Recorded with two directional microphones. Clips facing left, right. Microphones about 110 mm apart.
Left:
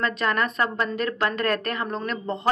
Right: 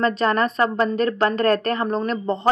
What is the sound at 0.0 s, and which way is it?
A woman's voice, 35° right (ahead or behind).